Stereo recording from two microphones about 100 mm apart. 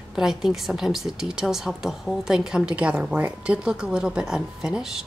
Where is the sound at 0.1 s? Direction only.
5° right (ahead or behind).